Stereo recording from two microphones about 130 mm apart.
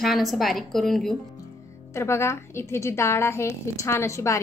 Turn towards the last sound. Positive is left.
turn(degrees=20)  # may be behind; listen again after turning